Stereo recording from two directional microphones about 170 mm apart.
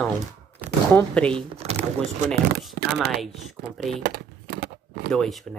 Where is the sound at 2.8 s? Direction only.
70° right (ahead or behind).